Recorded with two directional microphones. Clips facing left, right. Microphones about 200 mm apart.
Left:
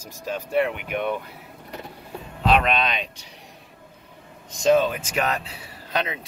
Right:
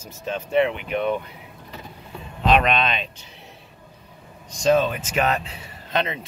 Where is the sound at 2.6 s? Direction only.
10° left (ahead or behind).